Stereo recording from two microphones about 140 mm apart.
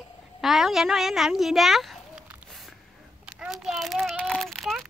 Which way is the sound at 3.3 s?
5° right (ahead or behind).